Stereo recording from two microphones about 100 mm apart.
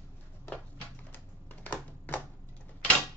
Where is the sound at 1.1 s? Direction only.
15° left (ahead or behind).